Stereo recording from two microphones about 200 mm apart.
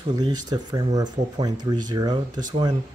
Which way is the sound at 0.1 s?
20° right (ahead or behind).